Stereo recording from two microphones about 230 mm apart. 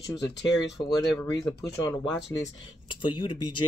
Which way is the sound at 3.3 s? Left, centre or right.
Left.